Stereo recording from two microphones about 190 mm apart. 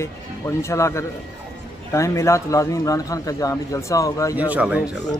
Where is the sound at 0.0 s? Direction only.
15° left (ahead or behind).